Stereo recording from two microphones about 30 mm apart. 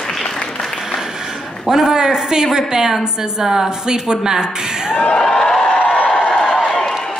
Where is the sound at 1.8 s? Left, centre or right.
Right.